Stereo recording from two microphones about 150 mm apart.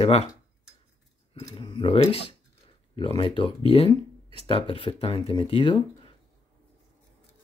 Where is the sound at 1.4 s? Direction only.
30° left (ahead or behind).